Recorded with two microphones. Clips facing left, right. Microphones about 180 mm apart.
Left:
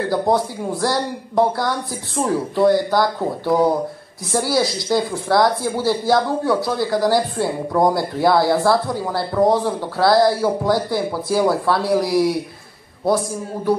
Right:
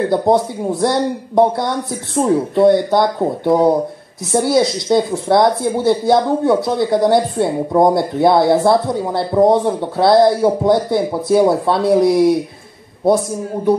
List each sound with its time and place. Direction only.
0.1 s speech: 20° right (ahead or behind)